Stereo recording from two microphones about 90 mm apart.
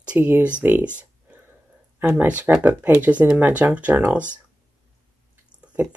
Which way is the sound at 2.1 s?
15° right (ahead or behind).